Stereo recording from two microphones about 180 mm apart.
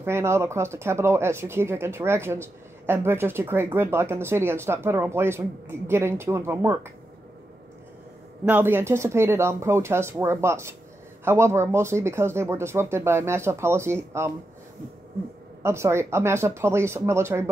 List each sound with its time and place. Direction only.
0.0 s speech: 15° right (ahead or behind)
8.5 s speech: 10° right (ahead or behind)
15.6 s speech: 15° right (ahead or behind)